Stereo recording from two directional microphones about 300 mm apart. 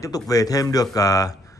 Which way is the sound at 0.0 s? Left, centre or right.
Centre.